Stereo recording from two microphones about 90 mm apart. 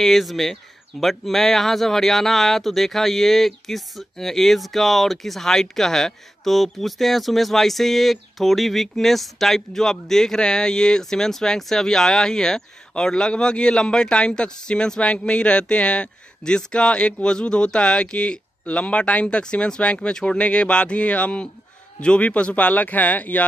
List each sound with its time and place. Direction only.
0.0 s speech: centre (ahead or behind); by 23.4 s 15° left (ahead or behind)